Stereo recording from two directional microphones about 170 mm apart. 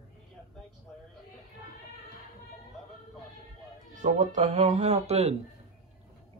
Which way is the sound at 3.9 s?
50° right (ahead or behind).